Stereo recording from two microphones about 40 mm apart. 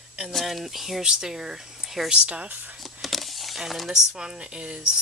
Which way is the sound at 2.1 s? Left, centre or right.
Right.